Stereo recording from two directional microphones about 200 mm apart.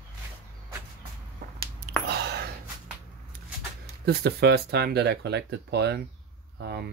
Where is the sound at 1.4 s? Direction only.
40° right (ahead or behind).